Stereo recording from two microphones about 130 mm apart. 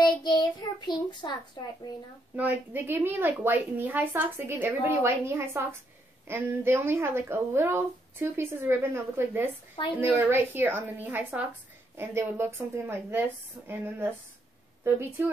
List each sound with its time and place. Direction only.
0.0 s child singing: 35° left (ahead or behind)
1.6 s speech: 35° left (ahead or behind)
2.3 s speech: 15° right (ahead or behind)